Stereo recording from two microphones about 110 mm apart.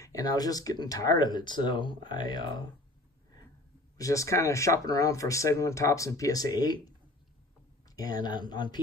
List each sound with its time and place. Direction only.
0.0 s speech: 35° left (ahead or behind)
4.0 s speech: 30° left (ahead or behind)
7.9 s speech: 35° left (ahead or behind)